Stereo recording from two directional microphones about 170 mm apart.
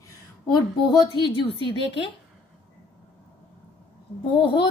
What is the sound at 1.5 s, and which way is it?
Speech, 30° left (ahead or behind).